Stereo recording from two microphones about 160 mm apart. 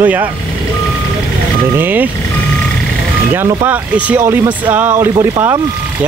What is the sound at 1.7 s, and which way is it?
Speech, 10° right (ahead or behind).